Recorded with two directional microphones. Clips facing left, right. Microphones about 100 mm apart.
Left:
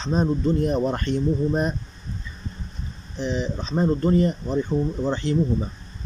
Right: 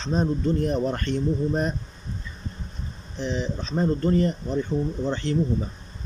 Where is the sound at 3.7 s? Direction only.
20° left (ahead or behind).